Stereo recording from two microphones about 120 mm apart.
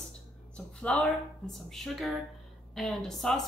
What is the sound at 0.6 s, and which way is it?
A woman's voice, 10° left (ahead or behind).